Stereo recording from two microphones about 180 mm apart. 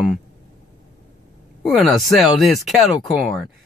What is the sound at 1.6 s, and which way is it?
Speech, centre (ahead or behind).